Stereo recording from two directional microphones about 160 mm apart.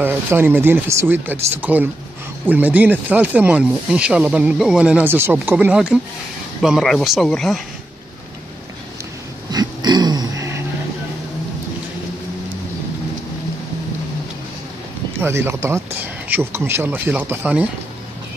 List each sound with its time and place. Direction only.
0.0 s speech: 15° right (ahead or behind); by 7.6 s centre (ahead or behind)
9.5 s a sound: 25° right (ahead or behind)
15.1 s speech: 15° right (ahead or behind)